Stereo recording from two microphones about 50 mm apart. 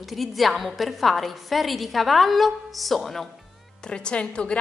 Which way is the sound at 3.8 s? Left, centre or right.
Centre.